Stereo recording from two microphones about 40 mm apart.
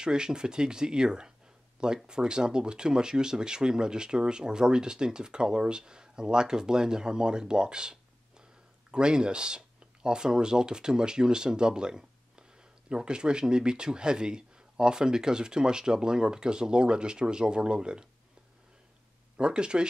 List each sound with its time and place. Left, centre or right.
0.0 s speech: centre
19.3 s speech: right